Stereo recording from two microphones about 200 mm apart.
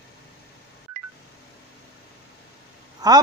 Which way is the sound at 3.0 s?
20° right (ahead or behind).